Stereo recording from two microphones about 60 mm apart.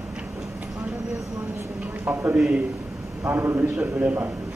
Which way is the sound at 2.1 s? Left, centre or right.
Right.